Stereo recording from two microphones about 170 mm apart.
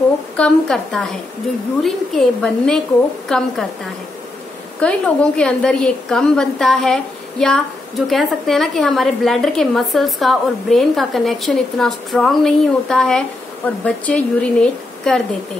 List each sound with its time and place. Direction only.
0.4 s a woman's voice: 5° left (ahead or behind)
4.7 s a woman's voice: 5° left (ahead or behind)